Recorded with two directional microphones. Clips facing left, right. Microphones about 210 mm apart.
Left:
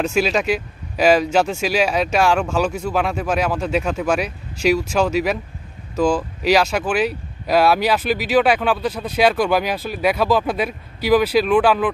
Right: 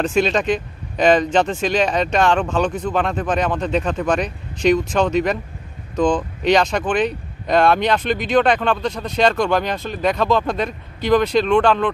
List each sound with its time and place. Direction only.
0.0 s speech: 5° left (ahead or behind)